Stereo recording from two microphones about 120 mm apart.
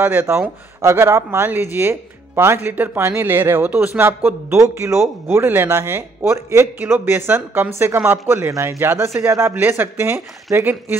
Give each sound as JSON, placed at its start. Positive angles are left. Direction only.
{"t": 0.0, "sound": "speech", "side_deg": -15}